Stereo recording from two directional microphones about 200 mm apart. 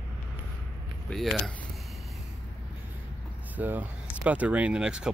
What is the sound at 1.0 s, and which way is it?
Speech, centre (ahead or behind).